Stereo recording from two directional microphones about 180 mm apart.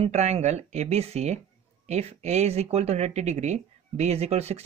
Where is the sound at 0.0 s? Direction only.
35° right (ahead or behind).